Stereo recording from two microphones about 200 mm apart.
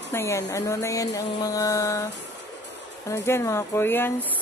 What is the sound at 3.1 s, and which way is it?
Speech, 15° left (ahead or behind).